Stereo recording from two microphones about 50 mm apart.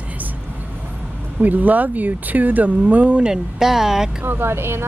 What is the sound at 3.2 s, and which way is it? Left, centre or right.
Speech, centre.